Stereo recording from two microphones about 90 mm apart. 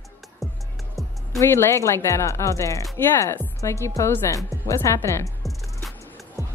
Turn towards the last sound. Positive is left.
turn(degrees=35)  # may be behind; listen again after turning